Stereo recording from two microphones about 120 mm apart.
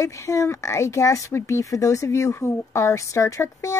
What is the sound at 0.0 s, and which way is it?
Speech, 25° left (ahead or behind).